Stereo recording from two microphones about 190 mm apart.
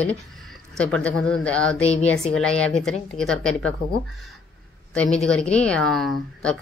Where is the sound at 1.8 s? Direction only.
30° left (ahead or behind).